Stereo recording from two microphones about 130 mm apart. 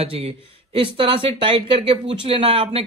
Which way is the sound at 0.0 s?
50° right (ahead or behind).